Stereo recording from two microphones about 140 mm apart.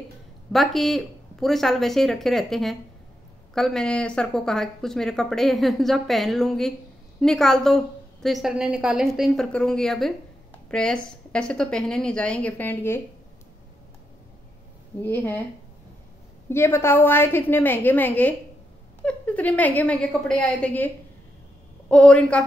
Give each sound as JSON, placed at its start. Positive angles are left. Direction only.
{"t": 0.5, "sound": "a woman's voice", "side_deg": 0}
{"t": 15.0, "sound": "a woman's voice", "side_deg": 15}
{"t": 16.4, "sound": "a woman's voice", "side_deg": 15}